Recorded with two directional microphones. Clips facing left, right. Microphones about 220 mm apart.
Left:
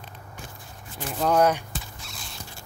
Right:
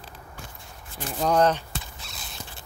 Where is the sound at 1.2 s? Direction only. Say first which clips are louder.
Even; 5° left (ahead or behind).